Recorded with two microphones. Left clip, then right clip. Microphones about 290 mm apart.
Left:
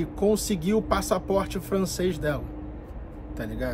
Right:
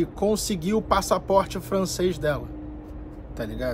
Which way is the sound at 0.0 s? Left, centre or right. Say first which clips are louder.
Right 1 dB; centre.